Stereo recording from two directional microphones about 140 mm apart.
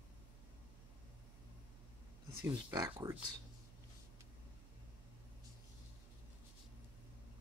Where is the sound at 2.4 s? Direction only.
25° right (ahead or behind).